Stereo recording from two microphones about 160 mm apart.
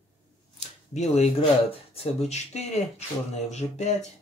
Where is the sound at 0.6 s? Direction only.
40° left (ahead or behind).